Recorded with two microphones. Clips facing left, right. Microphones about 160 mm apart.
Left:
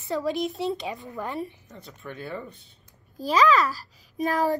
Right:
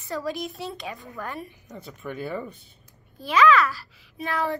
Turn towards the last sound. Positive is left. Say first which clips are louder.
# left 4 dB
turn(degrees=40)  # may be behind; listen again after turning